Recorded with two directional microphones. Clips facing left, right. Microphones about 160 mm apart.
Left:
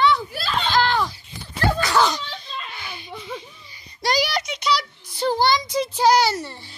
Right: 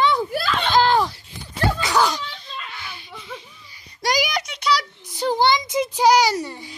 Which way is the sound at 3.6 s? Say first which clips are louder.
Right 1 dB; 10° right (ahead or behind).